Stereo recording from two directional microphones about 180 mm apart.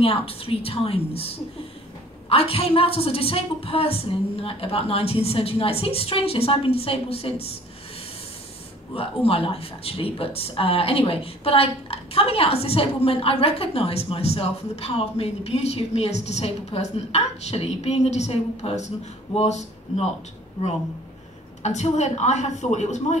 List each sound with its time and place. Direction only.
0.0 s speech: 30° left (ahead or behind)
8.9 s speech: 30° left (ahead or behind)
21.6 s speech: 40° left (ahead or behind)